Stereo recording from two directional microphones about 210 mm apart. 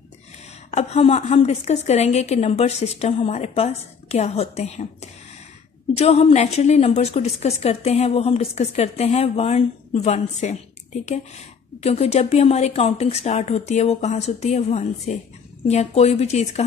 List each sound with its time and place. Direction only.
0.7 s a woman's voice: 30° left (ahead or behind)